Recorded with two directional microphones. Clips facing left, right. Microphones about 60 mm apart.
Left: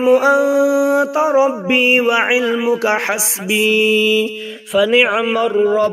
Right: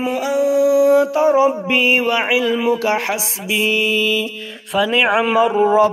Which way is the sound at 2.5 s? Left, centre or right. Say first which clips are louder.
Left 1 dB; centre.